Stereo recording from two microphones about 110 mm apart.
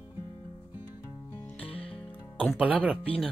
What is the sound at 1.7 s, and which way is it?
Music, 60° left (ahead or behind).